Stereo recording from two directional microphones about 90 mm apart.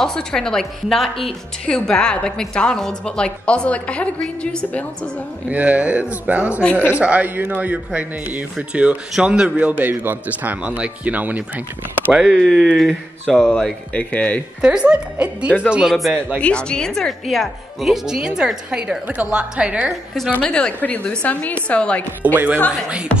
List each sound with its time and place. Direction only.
0.0 s a woman's voice: 5° left (ahead or behind)
5.5 s a man's voice: 15° right (ahead or behind)
6.6 s a woman's voice: 15° left (ahead or behind)
6.9 s a man's voice: 15° right (ahead or behind)
12.1 s a woman's voice: 5° right (ahead or behind); by 14.4 s 15° left (ahead or behind)
14.6 s a man's voice: 10° right (ahead or behind)
16.3 s a man's voice: 10° left (ahead or behind); by 19.9 s 15° right (ahead or behind)
20.4 s a woman's voice: 10° left (ahead or behind)
22.2 s a woman's voice: 20° right (ahead or behind)